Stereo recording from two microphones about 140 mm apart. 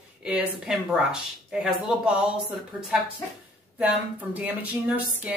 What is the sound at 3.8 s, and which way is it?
Speech, 10° right (ahead or behind).